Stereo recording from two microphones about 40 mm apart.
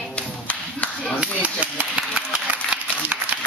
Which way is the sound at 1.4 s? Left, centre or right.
Right.